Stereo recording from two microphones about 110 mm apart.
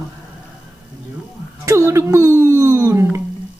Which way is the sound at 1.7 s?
25° right (ahead or behind).